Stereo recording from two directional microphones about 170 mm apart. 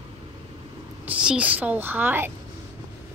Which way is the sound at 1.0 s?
5° right (ahead or behind).